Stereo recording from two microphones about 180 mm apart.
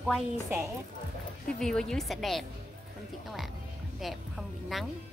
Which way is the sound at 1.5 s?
Centre (ahead or behind).